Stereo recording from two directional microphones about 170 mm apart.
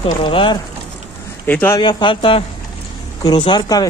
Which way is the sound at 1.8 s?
30° left (ahead or behind).